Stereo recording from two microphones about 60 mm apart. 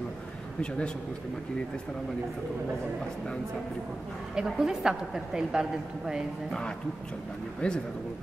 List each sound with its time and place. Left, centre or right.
0.6 s a man's voice: centre
4.4 s a woman's voice: centre
7.6 s a man's voice: centre